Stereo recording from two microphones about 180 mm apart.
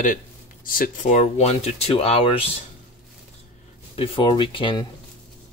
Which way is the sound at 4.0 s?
30° left (ahead or behind).